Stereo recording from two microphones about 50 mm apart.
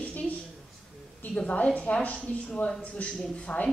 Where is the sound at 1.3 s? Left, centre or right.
Left.